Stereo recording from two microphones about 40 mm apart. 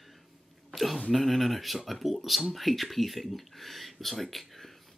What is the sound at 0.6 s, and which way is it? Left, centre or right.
Speech, centre.